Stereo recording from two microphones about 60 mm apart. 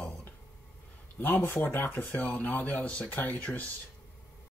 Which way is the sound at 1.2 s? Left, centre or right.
Left.